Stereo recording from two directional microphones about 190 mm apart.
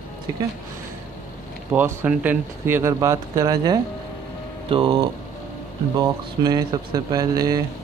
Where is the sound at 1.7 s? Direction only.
10° right (ahead or behind); by 4.9 s 30° right (ahead or behind).